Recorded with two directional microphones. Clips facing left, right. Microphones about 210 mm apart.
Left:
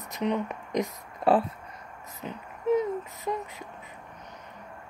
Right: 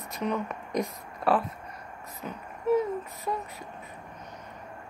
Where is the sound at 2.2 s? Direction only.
20° left (ahead or behind).